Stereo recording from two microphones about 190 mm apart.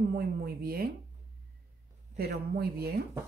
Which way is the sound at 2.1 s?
55° right (ahead or behind).